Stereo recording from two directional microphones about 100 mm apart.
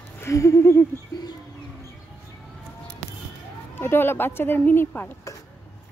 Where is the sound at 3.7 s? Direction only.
20° left (ahead or behind).